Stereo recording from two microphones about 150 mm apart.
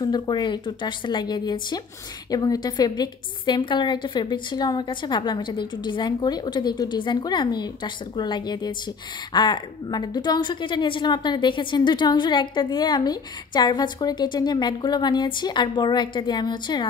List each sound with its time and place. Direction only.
0.0 s a woman's voice: 30° left (ahead or behind)